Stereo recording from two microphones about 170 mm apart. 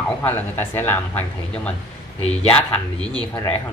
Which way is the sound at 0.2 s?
10° left (ahead or behind).